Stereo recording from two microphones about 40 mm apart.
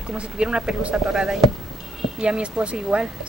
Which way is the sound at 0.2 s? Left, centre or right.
Right.